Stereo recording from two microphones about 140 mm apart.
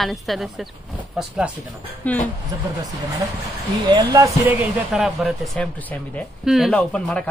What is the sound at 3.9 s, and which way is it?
Speech, 25° right (ahead or behind).